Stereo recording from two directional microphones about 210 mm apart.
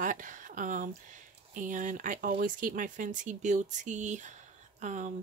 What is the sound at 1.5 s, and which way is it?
Speech, 35° right (ahead or behind).